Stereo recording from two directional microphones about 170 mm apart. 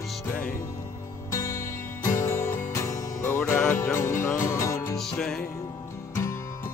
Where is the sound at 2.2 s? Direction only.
15° left (ahead or behind).